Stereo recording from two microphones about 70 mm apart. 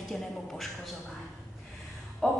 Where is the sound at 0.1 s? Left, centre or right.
Centre.